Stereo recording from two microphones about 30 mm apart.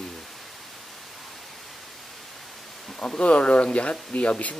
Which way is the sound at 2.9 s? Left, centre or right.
Left.